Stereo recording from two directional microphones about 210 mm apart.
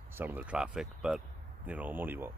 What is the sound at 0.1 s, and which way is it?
Speech, 10° right (ahead or behind).